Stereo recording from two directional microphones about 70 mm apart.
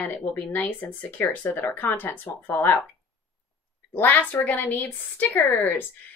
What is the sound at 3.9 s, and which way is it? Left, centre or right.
Speech, left.